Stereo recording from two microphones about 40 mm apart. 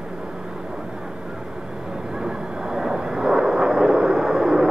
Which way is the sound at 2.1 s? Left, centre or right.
Centre.